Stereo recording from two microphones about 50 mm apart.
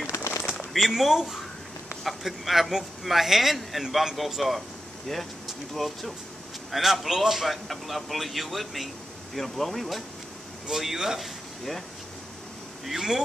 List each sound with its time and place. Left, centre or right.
0.0 s a sound: left
0.7 s a man's voice: centre
12.8 s speech: centre